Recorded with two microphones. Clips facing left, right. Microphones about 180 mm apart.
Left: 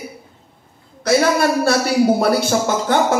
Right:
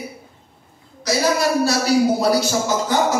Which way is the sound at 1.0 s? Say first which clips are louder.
Left 4 dB; 55° left (ahead or behind).